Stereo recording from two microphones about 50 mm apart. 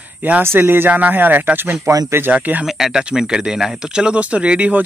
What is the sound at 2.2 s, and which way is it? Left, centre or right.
Speech, right.